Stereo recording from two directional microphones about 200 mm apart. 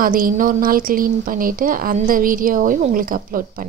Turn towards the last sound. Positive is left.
turn(degrees=-45)  # may be behind; listen again after turning